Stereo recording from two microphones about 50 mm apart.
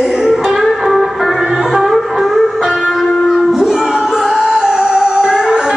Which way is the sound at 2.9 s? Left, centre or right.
Centre.